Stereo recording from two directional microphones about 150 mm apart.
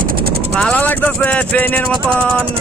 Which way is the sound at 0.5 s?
5° left (ahead or behind).